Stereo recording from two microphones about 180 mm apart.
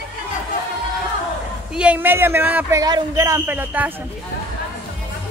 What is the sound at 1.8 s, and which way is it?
A man's voice, 10° right (ahead or behind).